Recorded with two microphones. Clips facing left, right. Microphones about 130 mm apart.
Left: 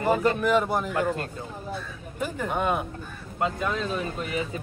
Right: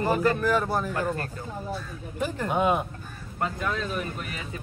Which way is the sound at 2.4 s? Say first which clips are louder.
Right 2 dB; 5° right (ahead or behind).